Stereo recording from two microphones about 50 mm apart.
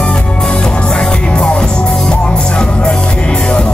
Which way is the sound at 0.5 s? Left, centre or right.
Centre.